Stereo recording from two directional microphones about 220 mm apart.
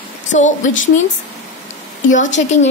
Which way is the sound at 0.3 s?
35° left (ahead or behind).